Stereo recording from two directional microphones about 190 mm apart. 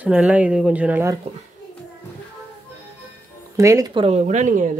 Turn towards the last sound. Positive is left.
turn(degrees=-40)  # may be behind; listen again after turning